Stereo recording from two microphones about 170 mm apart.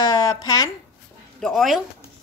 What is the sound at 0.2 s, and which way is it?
Speech, 20° left (ahead or behind).